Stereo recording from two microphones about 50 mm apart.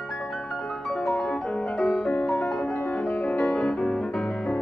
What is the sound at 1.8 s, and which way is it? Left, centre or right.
Music, centre.